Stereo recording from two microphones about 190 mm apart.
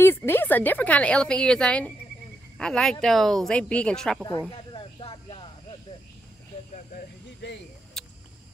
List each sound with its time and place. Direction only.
0.0 s a woman's voice: 10° left (ahead or behind)
4.7 s music: 25° left (ahead or behind)
7.4 s speech: 65° left (ahead or behind)
8.0 s cricket: centre (ahead or behind)